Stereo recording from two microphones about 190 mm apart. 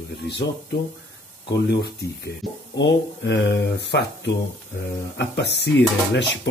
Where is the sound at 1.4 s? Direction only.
60° left (ahead or behind).